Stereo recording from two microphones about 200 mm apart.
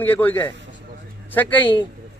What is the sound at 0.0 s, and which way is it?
Speech, 10° left (ahead or behind).